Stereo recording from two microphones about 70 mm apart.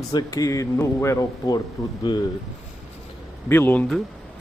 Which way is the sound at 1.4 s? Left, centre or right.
Left.